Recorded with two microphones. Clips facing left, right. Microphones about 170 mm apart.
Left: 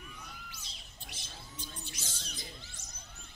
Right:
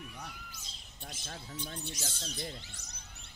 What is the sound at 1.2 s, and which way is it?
Speech, 65° right (ahead or behind).